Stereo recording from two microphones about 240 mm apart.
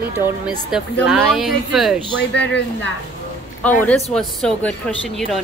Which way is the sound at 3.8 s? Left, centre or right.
Centre.